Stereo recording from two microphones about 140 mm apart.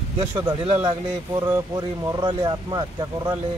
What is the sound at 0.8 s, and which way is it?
Speech, 30° right (ahead or behind).